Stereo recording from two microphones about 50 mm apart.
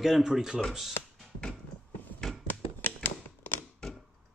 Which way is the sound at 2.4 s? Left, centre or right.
Left.